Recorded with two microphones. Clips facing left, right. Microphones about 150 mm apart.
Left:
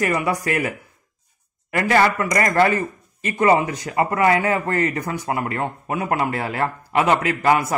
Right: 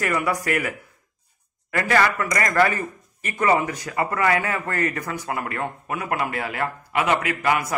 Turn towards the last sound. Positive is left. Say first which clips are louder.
# left 4 dB
turn(degrees=30)  # may be behind; listen again after turning